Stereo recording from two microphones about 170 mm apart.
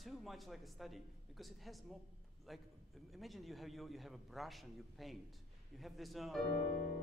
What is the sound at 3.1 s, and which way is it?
A man's voice, centre (ahead or behind).